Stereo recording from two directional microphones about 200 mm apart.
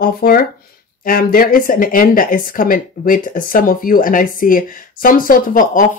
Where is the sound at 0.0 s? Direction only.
45° left (ahead or behind).